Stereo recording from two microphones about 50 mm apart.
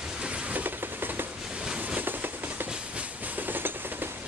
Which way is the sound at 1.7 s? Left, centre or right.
Right.